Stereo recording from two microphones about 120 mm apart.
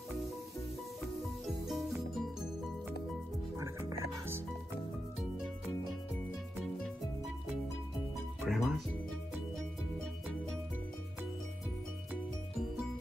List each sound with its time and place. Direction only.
1.7 s music: centre (ahead or behind)
3.5 s music: 25° right (ahead or behind)
8.4 s music: centre (ahead or behind)